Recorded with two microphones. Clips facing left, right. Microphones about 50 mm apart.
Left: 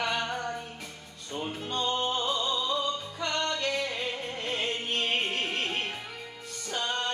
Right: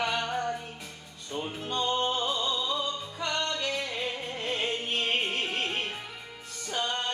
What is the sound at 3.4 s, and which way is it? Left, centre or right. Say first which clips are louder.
Music: left 1 dB; centre.